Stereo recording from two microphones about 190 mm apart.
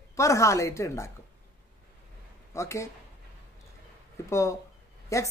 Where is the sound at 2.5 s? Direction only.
15° left (ahead or behind).